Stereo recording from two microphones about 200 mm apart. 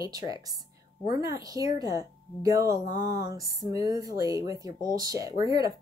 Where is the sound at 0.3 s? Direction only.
20° right (ahead or behind).